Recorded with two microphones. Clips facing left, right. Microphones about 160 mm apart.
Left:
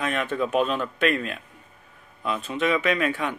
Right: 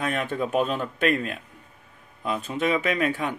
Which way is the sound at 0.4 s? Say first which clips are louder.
Left 1 dB; 45° right (ahead or behind).